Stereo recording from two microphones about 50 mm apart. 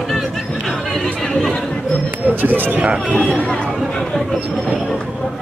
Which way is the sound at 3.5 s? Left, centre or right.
Centre.